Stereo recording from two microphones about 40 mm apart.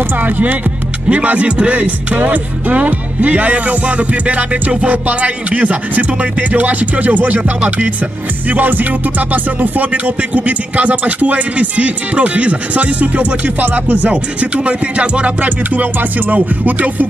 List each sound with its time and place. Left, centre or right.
0.2 s music: right
1.0 s speech: right
8.5 s music: right
9.3 s speech: right
14.0 s music: right
15.4 s music: right